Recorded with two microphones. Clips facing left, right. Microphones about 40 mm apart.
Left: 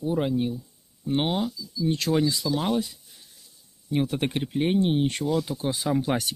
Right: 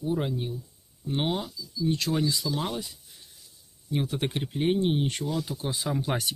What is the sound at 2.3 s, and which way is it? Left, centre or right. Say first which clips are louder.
Speech: left 4 dB; left.